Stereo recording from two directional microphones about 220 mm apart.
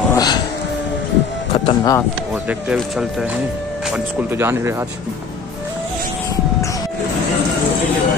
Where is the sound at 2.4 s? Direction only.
5° right (ahead or behind).